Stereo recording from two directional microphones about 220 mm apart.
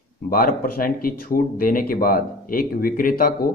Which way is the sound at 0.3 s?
40° left (ahead or behind).